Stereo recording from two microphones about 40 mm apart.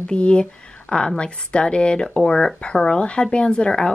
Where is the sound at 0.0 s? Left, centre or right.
Left.